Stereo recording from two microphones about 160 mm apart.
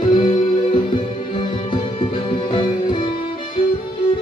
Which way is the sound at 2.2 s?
30° left (ahead or behind).